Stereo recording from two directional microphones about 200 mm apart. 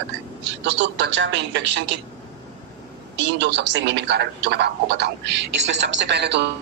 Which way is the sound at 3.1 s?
60° right (ahead or behind).